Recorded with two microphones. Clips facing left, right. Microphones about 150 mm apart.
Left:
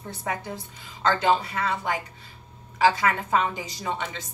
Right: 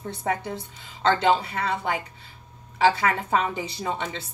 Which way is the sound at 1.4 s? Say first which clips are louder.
Right 1 dB; 30° right (ahead or behind).